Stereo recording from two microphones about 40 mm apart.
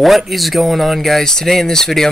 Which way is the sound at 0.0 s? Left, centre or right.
Centre.